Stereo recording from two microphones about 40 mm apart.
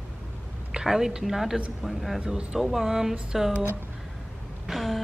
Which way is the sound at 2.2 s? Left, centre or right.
Centre.